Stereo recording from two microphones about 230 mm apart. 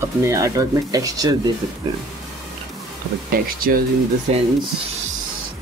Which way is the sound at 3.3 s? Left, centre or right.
Right.